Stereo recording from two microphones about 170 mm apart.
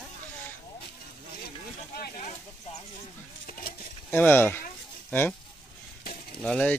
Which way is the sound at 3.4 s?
55° left (ahead or behind).